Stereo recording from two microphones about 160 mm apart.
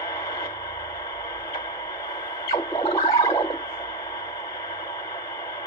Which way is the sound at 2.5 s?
25° left (ahead or behind).